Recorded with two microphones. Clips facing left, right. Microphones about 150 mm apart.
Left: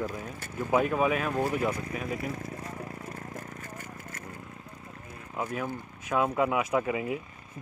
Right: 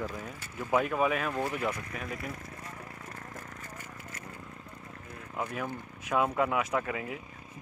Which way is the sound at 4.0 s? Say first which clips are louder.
Left 2 dB; 45° left (ahead or behind).